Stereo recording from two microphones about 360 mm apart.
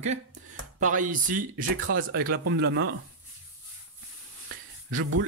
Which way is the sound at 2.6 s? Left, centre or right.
Right.